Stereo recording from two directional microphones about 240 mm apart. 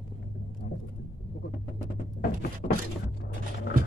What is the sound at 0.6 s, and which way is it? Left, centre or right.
Vehicle, left.